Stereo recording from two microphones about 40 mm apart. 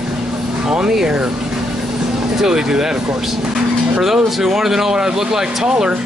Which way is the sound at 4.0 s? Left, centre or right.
Centre.